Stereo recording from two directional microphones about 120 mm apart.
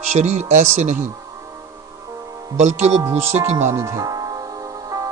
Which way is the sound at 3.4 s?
20° right (ahead or behind).